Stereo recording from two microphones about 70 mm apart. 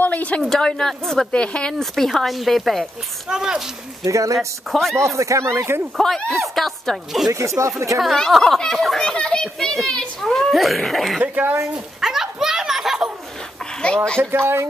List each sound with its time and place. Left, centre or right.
0.0 s speech: left
0.4 s a child's voice: centre
3.3 s speech: centre
4.0 s speech: right
4.6 s a child's voice: centre
4.9 s speech: right
5.9 s a child's voice: centre
7.3 s speech: right
8.0 s a child's voice: centre
11.7 s a sound: centre
13.7 s speech: centre
14.3 s speech: right